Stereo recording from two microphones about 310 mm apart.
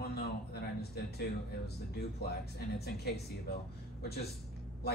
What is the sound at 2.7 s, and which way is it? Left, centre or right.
A man's voice, left.